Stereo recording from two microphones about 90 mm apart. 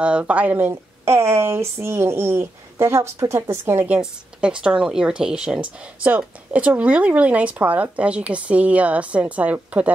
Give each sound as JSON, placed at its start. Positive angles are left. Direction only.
{"t": 0.0, "sound": "speech", "side_deg": -15}